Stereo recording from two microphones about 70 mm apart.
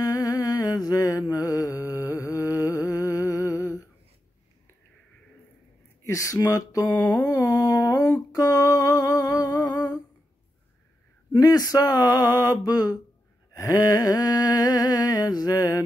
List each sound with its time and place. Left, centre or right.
0.0 s music: left
6.0 s speech: left
7.2 s a sound: left
7.6 s a sound: left
8.3 s humming: left
11.3 s speech: left
11.9 s mantra: left
13.6 s humming: left